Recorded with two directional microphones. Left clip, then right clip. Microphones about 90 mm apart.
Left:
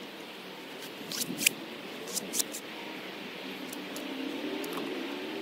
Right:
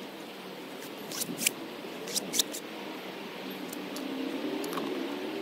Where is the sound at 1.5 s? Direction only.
20° left (ahead or behind).